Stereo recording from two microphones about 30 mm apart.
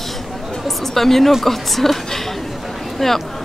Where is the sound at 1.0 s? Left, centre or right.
Centre.